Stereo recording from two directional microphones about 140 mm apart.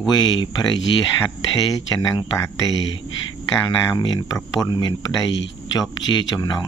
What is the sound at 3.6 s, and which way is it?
Speech, 30° left (ahead or behind).